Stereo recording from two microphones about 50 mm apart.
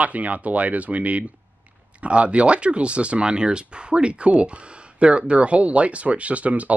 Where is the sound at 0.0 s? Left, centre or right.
Right.